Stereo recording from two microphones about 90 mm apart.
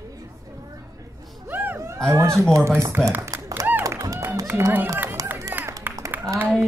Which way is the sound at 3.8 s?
35° right (ahead or behind).